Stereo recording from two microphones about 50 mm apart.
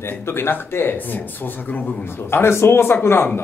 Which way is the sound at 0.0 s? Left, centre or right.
Left.